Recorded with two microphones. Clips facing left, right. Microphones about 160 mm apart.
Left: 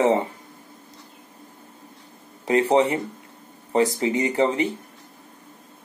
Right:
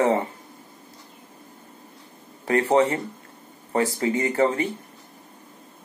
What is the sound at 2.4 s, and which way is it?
Speech, 20° left (ahead or behind).